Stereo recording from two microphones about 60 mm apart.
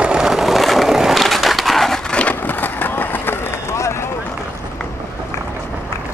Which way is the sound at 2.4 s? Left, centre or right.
Left.